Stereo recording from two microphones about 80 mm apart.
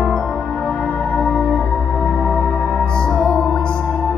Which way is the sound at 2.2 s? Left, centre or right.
Centre.